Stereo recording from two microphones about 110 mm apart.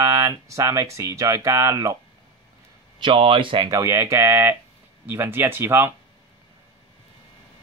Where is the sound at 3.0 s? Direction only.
50° right (ahead or behind).